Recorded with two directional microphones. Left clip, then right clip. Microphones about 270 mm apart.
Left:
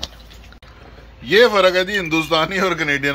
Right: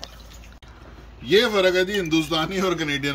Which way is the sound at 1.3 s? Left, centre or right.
Centre.